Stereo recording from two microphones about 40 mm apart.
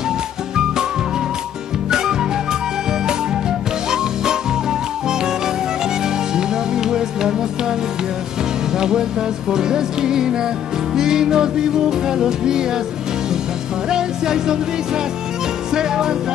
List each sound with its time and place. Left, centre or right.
1.9 s music: centre
8.7 s music: centre
13.8 s music: centre
15.7 s music: centre